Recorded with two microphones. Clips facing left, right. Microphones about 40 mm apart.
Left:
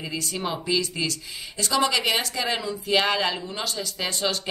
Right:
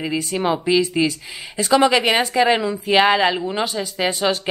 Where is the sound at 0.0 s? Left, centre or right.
Right.